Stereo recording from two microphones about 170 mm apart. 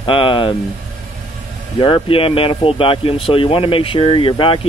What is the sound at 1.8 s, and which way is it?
Speech, 30° left (ahead or behind).